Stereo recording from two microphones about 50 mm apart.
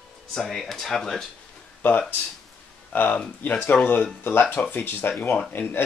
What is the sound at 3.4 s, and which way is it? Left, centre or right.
Speech, left.